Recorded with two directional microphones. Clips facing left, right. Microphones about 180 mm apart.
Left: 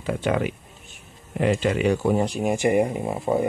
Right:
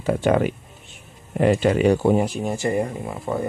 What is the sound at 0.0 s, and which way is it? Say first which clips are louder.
Speech: right 4 dB; 45° right (ahead or behind).